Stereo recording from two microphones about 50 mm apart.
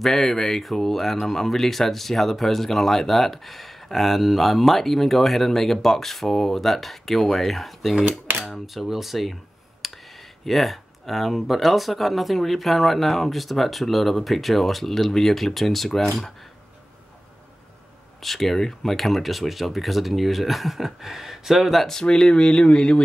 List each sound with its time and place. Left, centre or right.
0.0 s speech: centre
18.2 s speech: centre
22.0 s speech: centre